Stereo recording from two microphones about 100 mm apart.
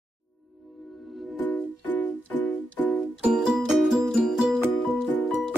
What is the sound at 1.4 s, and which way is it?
Music, 15° left (ahead or behind).